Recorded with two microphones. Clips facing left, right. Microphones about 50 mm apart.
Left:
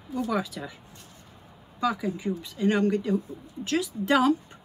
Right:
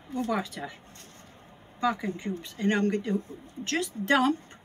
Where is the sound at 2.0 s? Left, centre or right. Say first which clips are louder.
Left 3 dB; right.